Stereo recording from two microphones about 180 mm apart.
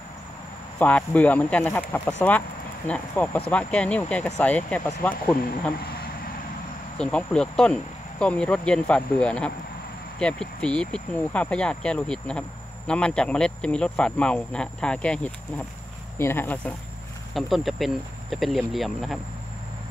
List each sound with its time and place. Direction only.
0.7 s speech: 5° left (ahead or behind)
7.0 s speech: 5° left (ahead or behind)
17.3 s speech: centre (ahead or behind)